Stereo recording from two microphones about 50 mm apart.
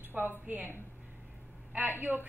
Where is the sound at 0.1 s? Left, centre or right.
Right.